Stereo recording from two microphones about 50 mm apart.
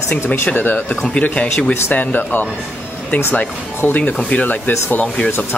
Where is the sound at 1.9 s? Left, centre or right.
Left.